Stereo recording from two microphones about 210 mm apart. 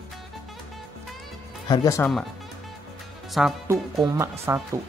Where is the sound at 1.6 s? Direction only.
20° left (ahead or behind).